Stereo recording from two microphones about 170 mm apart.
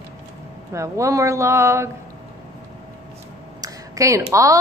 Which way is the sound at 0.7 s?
15° right (ahead or behind).